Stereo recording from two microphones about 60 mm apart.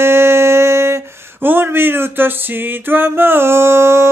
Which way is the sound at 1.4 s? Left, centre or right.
Right.